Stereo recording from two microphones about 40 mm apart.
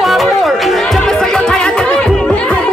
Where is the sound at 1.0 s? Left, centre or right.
Centre.